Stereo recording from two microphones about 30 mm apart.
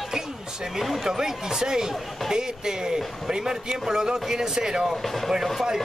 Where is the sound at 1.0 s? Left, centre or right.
Centre.